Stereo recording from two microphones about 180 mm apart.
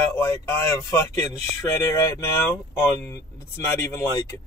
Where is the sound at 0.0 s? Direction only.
15° left (ahead or behind).